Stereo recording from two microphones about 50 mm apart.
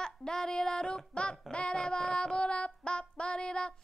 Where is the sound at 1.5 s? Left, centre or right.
Left.